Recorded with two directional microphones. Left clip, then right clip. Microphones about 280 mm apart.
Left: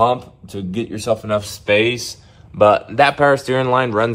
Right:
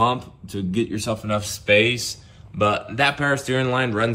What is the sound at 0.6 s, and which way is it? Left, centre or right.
Speech, centre.